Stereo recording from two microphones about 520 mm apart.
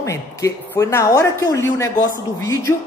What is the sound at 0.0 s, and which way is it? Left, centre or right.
Speech, centre.